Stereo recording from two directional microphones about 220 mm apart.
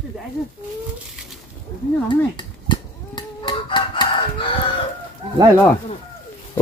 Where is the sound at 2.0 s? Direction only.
20° left (ahead or behind).